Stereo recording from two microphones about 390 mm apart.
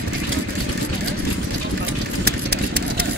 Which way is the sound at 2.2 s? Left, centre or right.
Right.